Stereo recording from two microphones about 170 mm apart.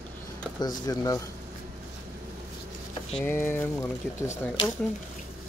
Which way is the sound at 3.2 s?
10° left (ahead or behind).